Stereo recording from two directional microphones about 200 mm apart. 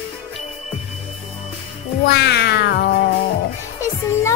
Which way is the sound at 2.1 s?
55° left (ahead or behind).